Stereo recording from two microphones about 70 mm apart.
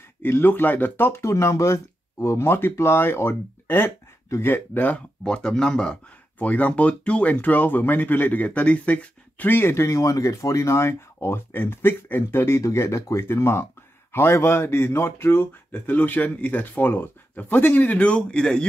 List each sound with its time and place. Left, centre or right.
0.2 s speech: left
5.2 s speech: centre; by 9.8 s left
9.8 s speech: left
15.9 s speech: left